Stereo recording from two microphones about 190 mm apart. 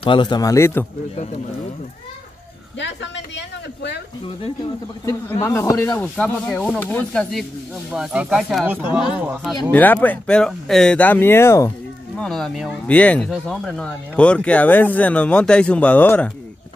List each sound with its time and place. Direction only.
0.0 s a man's voice: 25° left (ahead or behind)
2.8 s speech: 70° left (ahead or behind)
5.0 s a man's voice: 15° left (ahead or behind); by 9.5 s 5° right (ahead or behind)
9.7 s speech: 10° left (ahead or behind)
12.2 s speech: centre (ahead or behind)